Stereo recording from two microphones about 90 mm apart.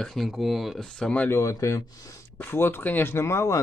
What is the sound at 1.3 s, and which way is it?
Speech, 35° left (ahead or behind).